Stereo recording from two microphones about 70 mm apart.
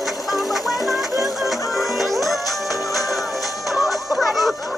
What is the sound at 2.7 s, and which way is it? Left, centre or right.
Music, left.